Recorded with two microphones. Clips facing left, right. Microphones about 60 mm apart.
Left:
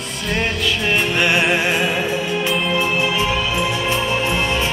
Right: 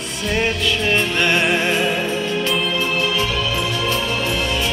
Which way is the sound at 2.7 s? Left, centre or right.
Centre.